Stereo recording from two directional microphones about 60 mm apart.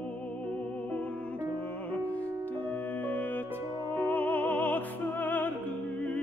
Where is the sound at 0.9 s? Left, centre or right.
Left.